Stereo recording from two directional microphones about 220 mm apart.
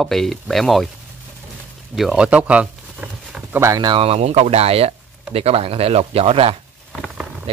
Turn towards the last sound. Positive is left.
turn(degrees=-25)  # may be behind; listen again after turning